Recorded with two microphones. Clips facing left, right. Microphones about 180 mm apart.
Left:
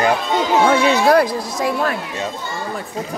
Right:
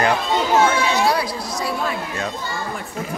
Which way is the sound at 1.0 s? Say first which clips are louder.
Left 7 dB; 50° left (ahead or behind).